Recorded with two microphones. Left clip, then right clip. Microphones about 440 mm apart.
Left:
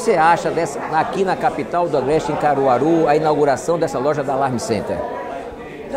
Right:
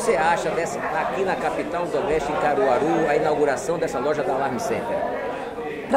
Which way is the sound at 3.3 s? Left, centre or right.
Left.